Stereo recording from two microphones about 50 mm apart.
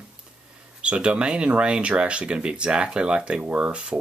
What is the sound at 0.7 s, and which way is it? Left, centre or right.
Speech, right.